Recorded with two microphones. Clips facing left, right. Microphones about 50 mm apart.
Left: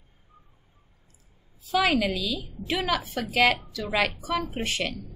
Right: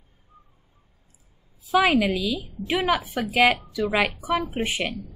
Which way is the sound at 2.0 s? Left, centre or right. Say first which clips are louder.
Right 4 dB; centre.